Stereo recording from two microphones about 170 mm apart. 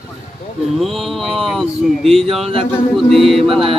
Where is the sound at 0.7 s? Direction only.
Centre (ahead or behind).